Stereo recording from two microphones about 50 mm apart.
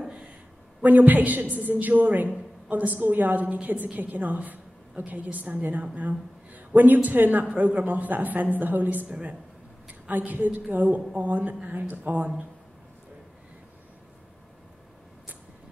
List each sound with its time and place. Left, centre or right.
0.8 s a woman's voice: right
9.1 s speech: right
10.0 s a woman's voice: right